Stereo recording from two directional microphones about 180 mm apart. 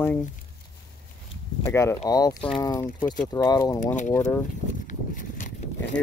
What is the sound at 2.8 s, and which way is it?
Speech, 50° left (ahead or behind).